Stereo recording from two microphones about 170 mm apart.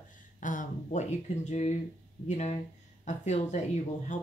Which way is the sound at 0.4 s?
50° left (ahead or behind).